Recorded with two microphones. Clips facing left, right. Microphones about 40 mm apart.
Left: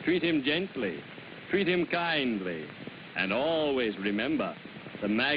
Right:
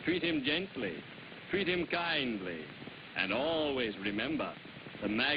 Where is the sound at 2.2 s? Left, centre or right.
Centre.